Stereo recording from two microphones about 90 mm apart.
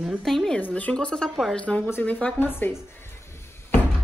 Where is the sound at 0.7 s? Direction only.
15° left (ahead or behind).